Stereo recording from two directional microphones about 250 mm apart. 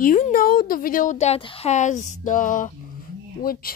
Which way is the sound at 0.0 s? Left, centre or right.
Left.